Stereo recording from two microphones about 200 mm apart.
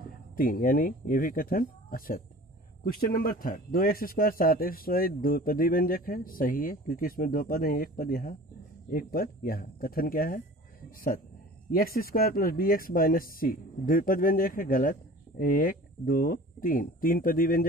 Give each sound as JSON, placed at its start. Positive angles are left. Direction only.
{"t": 0.4, "sound": "speech", "side_deg": 45}
{"t": 11.7, "sound": "speech", "side_deg": 45}